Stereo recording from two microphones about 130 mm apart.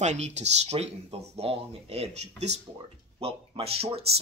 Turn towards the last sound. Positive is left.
turn(degrees=-50)  # may be behind; listen again after turning